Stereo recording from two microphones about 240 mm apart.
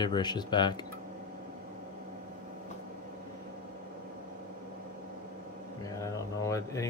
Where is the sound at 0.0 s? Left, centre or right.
Centre.